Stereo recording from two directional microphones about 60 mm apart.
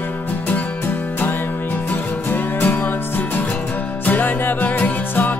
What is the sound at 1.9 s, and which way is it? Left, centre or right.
Music, left.